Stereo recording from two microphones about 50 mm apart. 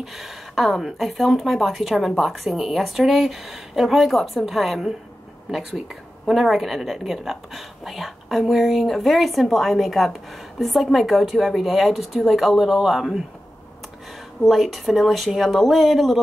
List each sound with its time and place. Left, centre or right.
0.0 s a woman's voice: centre
14.4 s a woman's voice: centre